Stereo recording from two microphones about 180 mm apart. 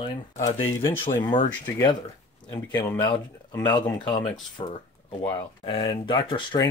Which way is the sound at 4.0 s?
25° left (ahead or behind).